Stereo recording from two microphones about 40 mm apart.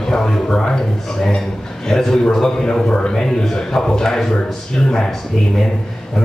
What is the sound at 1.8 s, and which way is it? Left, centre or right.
Speech, centre.